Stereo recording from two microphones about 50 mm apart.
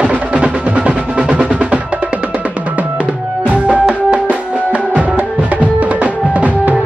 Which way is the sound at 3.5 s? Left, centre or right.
Right.